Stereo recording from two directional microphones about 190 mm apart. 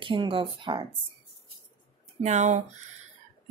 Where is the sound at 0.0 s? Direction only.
25° right (ahead or behind).